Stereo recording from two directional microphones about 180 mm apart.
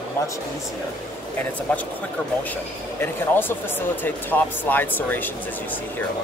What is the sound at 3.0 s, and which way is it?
Speech, 10° left (ahead or behind).